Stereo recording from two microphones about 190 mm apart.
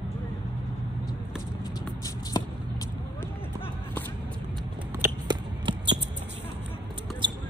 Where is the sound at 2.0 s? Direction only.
20° left (ahead or behind).